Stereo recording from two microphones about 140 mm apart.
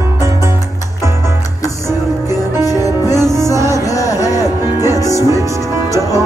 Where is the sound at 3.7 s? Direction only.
25° left (ahead or behind).